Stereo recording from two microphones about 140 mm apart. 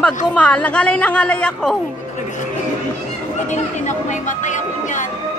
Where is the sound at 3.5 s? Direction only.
60° left (ahead or behind).